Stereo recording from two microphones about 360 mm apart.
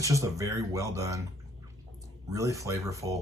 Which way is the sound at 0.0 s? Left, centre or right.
Centre.